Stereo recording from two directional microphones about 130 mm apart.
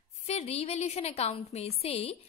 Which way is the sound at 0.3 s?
50° left (ahead or behind).